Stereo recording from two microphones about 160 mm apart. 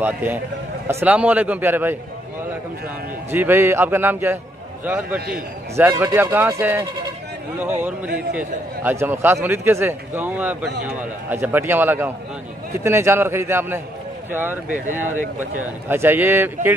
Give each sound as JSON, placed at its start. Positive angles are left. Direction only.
{"t": 0.0, "sound": "a man's voice", "side_deg": -10}
{"t": 3.3, "sound": "a man's voice", "side_deg": -15}
{"t": 5.8, "sound": "a man's voice", "side_deg": -15}